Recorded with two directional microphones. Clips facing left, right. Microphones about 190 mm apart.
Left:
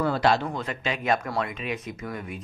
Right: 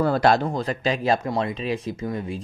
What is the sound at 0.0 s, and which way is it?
Speech, 45° right (ahead or behind).